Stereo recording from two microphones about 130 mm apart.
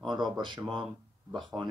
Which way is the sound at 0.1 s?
35° right (ahead or behind).